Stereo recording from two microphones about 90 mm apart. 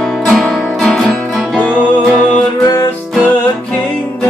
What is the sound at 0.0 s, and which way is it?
Music, 10° left (ahead or behind).